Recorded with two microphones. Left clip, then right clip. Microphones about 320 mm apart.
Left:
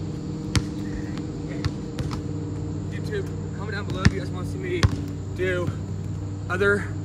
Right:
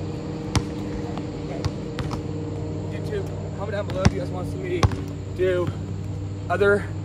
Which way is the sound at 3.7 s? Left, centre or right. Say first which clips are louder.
Right 2 dB; centre.